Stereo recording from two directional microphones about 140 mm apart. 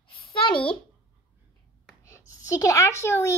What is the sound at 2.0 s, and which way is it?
Speech, 20° left (ahead or behind).